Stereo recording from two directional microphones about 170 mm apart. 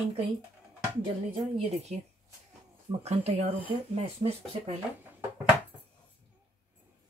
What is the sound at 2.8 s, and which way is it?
Speech, 40° right (ahead or behind).